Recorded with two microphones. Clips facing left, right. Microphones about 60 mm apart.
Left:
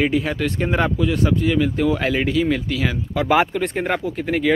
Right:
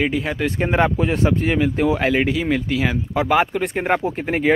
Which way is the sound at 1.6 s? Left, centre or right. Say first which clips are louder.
Right 1 dB; right.